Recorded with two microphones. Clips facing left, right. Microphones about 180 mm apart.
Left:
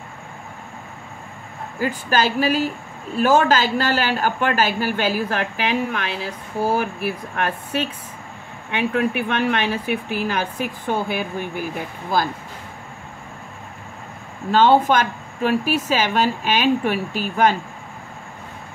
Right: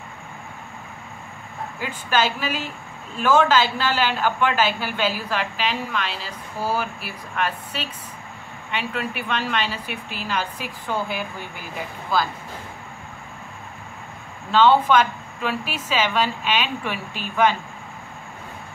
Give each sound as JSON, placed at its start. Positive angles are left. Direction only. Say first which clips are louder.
{"t": 1.8, "sound": "a woman's voice", "louder": "left 3 dB", "side_deg": 40}
{"t": 14.5, "sound": "a woman's voice", "louder": "left 1 dB", "side_deg": 45}